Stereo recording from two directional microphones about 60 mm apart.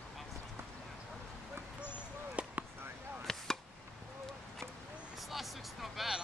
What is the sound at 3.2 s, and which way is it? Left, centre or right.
Chop, centre.